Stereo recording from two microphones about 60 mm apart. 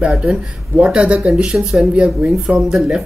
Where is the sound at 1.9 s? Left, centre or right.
Centre.